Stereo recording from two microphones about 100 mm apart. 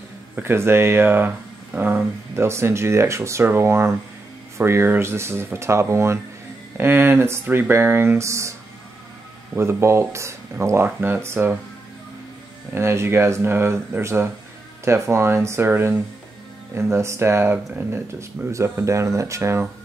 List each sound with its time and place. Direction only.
0.4 s speech: 25° right (ahead or behind)
9.6 s speech: 25° right (ahead or behind)
12.7 s speech: 25° right (ahead or behind)